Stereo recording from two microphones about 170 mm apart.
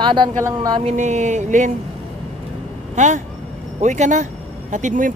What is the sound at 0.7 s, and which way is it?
Speech, 40° right (ahead or behind).